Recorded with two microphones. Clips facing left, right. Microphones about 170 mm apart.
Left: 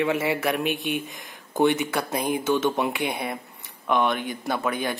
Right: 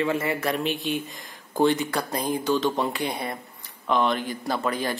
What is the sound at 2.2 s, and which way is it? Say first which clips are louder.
Speech: left 1 dB; 15° left (ahead or behind).